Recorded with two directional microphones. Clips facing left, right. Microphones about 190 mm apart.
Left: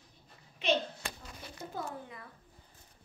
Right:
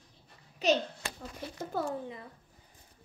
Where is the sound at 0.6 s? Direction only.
40° right (ahead or behind).